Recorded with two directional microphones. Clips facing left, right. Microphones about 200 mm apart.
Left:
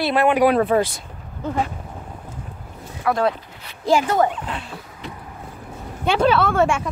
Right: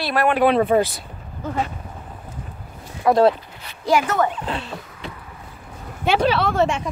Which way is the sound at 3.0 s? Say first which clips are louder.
Right 5 dB; 25° right (ahead or behind).